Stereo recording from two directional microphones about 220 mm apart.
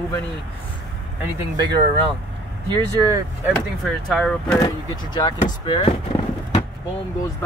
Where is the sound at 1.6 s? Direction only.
20° right (ahead or behind).